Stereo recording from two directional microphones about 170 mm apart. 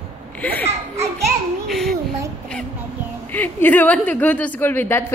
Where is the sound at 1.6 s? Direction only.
Centre (ahead or behind).